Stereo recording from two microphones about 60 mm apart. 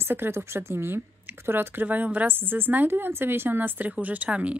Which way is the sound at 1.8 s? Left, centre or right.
Right.